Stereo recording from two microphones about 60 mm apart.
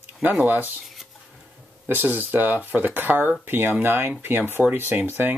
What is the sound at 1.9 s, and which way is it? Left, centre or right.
Speech, right.